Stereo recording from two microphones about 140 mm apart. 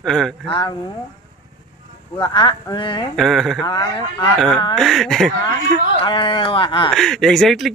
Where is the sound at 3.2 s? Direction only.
Centre (ahead or behind).